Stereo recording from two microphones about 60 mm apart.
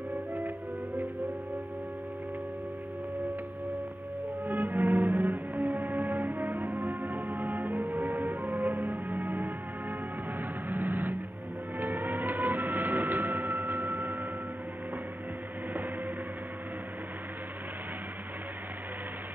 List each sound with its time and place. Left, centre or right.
4.5 s music: right
10.7 s vehicle: right